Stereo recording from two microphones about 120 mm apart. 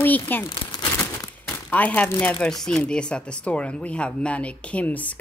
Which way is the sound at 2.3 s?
5° left (ahead or behind).